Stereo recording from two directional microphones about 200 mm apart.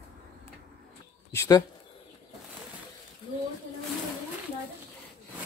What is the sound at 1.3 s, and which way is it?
Speech, 15° left (ahead or behind).